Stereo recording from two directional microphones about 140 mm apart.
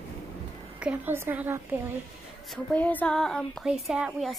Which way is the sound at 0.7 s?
10° right (ahead or behind).